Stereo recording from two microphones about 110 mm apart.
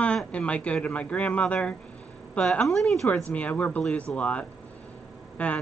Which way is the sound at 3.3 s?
15° left (ahead or behind).